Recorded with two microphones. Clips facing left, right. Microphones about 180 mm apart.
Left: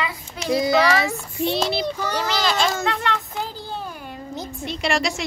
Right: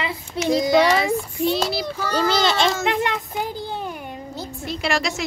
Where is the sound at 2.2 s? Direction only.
25° right (ahead or behind).